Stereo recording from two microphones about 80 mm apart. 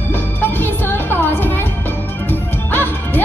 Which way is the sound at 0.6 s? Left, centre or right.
Left.